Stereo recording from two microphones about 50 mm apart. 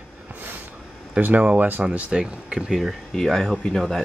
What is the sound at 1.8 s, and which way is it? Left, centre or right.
Speech, centre.